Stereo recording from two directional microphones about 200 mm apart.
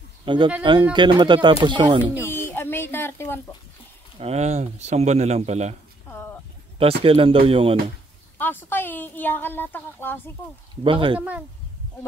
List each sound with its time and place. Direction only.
0.2 s speech: 25° right (ahead or behind)
2.2 s a sound: 10° left (ahead or behind)
4.2 s speech: 30° right (ahead or behind)
6.0 s a sound: 10° left (ahead or behind)
6.8 s speech: 30° right (ahead or behind)
8.4 s a woman's voice: 10° left (ahead or behind)
10.8 s speech: 25° right (ahead or behind)
11.1 s speech: 5° right (ahead or behind)